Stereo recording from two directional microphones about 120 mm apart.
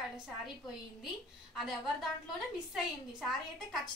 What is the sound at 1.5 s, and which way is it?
Speech, centre (ahead or behind).